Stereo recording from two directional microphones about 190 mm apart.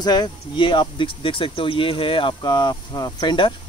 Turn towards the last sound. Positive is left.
turn(degrees=25)  # may be behind; listen again after turning